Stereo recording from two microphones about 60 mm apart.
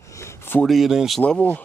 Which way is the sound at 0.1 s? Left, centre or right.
Left.